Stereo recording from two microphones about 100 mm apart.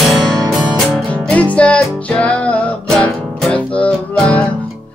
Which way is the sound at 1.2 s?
15° left (ahead or behind).